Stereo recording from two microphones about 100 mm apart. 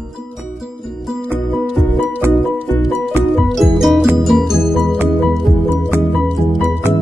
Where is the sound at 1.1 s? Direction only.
Centre (ahead or behind).